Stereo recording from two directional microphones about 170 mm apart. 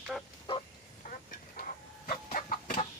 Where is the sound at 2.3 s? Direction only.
50° left (ahead or behind).